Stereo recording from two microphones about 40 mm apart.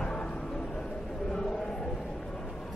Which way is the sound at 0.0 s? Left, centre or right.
Left.